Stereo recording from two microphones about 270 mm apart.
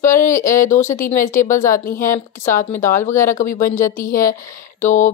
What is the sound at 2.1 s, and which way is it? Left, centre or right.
Speech, centre.